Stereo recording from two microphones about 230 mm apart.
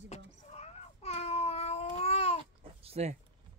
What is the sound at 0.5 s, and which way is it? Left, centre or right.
Cat, left.